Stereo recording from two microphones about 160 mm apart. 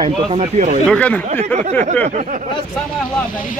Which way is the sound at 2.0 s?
50° right (ahead or behind).